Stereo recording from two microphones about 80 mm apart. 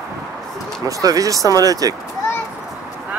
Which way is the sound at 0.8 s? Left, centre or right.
Right.